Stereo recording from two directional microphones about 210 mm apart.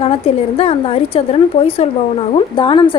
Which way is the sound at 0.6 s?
25° left (ahead or behind).